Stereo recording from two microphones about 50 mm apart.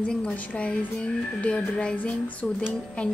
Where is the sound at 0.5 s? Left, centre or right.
Left.